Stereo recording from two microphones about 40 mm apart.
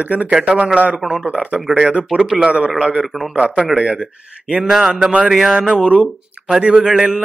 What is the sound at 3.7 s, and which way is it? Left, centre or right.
Speech, right.